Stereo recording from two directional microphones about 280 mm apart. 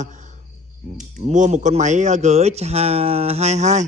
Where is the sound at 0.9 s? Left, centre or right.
Right.